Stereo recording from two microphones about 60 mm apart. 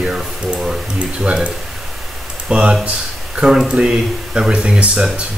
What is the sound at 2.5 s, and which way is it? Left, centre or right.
Speech, centre.